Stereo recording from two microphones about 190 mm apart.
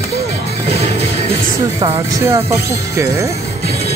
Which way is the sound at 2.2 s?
15° right (ahead or behind).